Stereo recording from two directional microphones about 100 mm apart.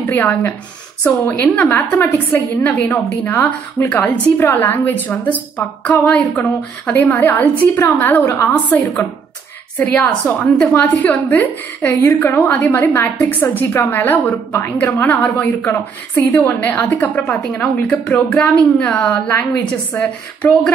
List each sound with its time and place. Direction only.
0.1 s a woman's voice: 20° left (ahead or behind)
8.3 s a woman's voice: 30° left (ahead or behind)
10.0 s a woman's voice: 5° left (ahead or behind)
10.8 s a woman's voice: 15° left (ahead or behind)